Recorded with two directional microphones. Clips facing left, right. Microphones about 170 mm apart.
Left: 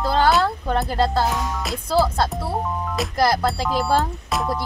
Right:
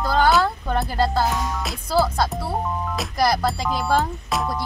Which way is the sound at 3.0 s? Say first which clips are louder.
Left 2 dB; centre (ahead or behind).